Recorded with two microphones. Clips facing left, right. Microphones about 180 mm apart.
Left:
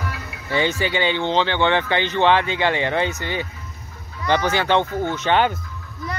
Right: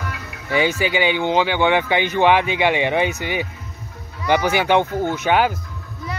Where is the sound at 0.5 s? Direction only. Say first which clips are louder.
Right 2 dB; 10° right (ahead or behind).